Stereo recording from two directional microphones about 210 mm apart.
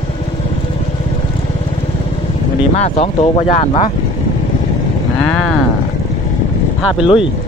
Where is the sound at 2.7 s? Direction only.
30° left (ahead or behind).